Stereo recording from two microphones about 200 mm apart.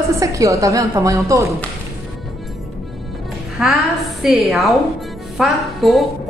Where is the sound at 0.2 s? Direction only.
15° right (ahead or behind).